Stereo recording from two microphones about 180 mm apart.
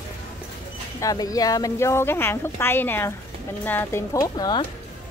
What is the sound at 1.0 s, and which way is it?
A woman's voice, 20° left (ahead or behind).